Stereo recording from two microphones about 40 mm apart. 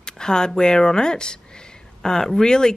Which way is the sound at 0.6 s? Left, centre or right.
Centre.